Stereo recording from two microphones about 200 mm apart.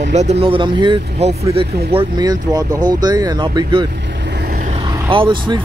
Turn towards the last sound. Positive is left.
turn(degrees=-25)  # may be behind; listen again after turning